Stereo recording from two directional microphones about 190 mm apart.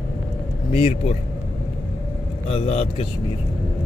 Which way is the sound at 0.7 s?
30° left (ahead or behind).